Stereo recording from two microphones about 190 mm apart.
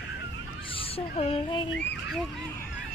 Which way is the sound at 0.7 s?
30° left (ahead or behind).